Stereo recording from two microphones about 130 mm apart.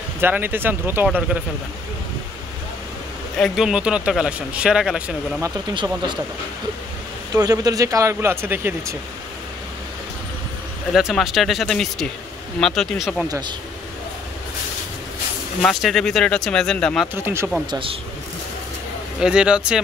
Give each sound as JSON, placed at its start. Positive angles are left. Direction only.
{"t": 0.2, "sound": "speech", "side_deg": -15}
{"t": 3.3, "sound": "speech", "side_deg": 0}
{"t": 7.3, "sound": "speech", "side_deg": -25}
{"t": 10.9, "sound": "speech", "side_deg": -5}
{"t": 15.6, "sound": "speech", "side_deg": 0}
{"t": 17.1, "sound": "speech", "side_deg": -20}
{"t": 17.6, "sound": "speech", "side_deg": -40}
{"t": 19.1, "sound": "speech", "side_deg": -5}